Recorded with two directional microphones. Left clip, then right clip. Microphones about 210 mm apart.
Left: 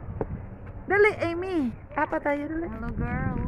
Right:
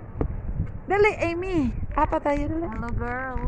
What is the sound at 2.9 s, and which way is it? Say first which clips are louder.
Vehicle: right 3 dB; 35° right (ahead or behind).